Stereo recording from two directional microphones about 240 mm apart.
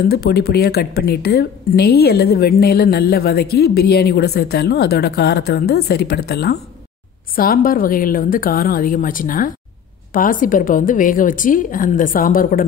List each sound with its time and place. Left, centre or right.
0.1 s speech: left